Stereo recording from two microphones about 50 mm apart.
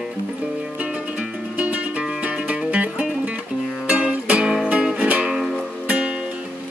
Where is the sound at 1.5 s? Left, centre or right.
Right.